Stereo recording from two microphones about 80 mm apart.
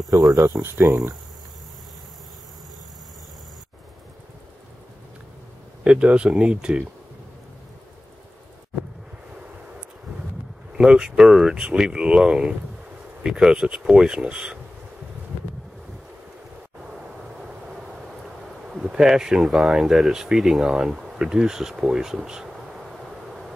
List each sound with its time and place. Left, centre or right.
0.3 s speech: right
5.9 s speech: centre
10.7 s speech: centre
17.4 s a sound: centre